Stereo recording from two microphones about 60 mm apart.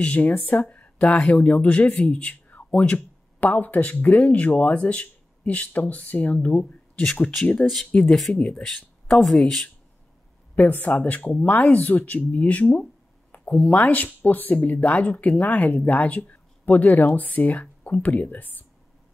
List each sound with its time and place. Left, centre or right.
0.0 s speech: left; by 9.7 s centre
10.5 s speech: left